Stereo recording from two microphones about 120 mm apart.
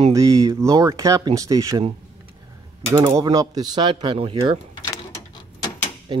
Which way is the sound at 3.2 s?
30° right (ahead or behind).